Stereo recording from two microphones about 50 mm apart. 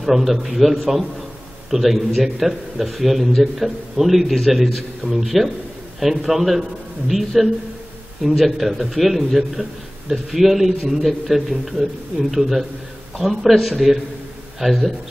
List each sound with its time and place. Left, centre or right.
0.0 s a man's voice: centre